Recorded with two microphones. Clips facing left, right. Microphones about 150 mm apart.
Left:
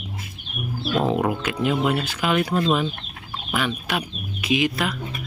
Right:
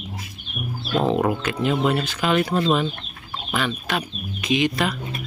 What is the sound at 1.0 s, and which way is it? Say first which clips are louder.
Speech: right 2 dB; 5° left (ahead or behind).